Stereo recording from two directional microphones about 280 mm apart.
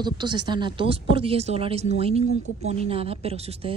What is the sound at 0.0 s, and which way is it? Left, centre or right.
A woman's voice, centre.